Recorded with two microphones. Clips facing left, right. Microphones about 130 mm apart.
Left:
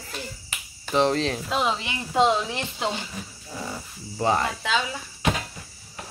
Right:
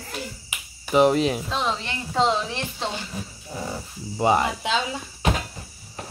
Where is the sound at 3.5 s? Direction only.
20° right (ahead or behind).